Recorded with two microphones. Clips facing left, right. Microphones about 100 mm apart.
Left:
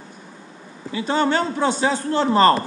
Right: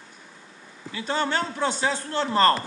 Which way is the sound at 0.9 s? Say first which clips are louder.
Left 6 dB; 5° left (ahead or behind).